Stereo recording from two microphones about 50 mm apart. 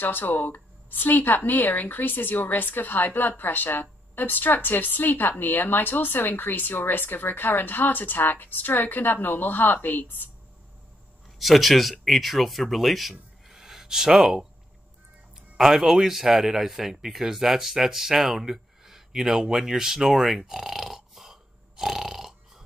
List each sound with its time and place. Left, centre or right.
0.0 s speech: left
11.3 s speech: centre
15.5 s a man's voice: centre